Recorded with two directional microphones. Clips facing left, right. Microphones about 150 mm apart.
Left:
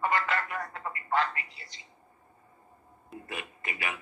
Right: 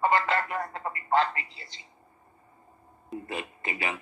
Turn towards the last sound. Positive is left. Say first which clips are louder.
# right 4 dB
turn(degrees=-30)  # may be behind; listen again after turning